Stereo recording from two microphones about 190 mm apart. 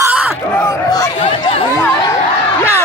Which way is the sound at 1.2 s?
30° left (ahead or behind).